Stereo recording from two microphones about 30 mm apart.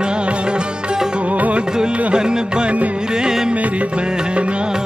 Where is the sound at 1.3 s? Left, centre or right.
Right.